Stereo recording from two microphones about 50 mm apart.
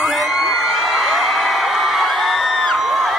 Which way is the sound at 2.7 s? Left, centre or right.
Centre.